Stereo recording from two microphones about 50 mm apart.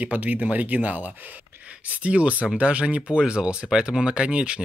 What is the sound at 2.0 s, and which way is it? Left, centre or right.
Speech, right.